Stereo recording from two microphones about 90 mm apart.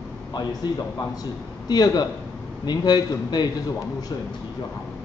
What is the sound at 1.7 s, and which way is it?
A man's voice, 50° left (ahead or behind).